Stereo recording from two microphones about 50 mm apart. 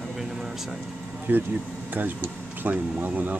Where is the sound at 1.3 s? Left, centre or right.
Right.